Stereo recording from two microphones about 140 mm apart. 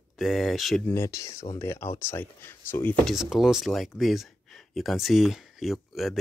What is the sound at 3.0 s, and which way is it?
Speech, 5° right (ahead or behind).